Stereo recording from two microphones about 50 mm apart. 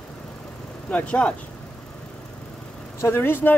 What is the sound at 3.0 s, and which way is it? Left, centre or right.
Speech, left.